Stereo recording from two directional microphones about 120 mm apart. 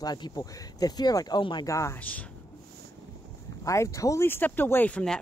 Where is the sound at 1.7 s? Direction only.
25° left (ahead or behind).